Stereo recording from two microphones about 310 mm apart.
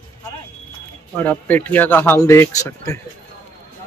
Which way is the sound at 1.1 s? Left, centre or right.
Centre.